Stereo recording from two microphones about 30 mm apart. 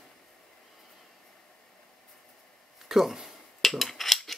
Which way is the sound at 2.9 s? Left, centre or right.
Centre.